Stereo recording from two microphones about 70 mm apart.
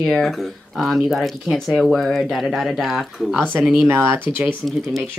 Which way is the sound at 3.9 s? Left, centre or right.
Right.